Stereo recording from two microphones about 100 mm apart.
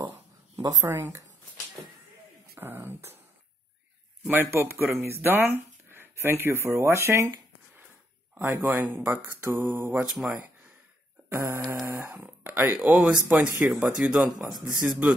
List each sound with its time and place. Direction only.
0.6 s speech: 35° right (ahead or behind)
2.5 s a sound: 20° right (ahead or behind)
4.3 s speech: 25° right (ahead or behind)
8.6 s speech: 20° right (ahead or behind)
10.1 s speech: 10° right (ahead or behind)
11.2 s a sound: 25° right (ahead or behind)
11.8 s speech: 25° right (ahead or behind)